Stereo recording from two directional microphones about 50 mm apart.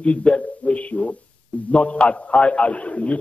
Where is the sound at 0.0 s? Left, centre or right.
Left.